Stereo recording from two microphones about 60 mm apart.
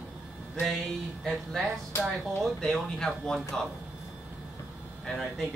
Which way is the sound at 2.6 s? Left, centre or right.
Centre.